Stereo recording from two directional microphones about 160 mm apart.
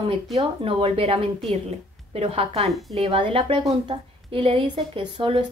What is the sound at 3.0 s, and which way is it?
A woman's voice, 35° right (ahead or behind).